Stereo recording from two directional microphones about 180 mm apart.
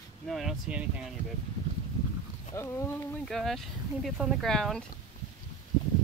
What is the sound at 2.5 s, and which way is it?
Speech, 15° left (ahead or behind).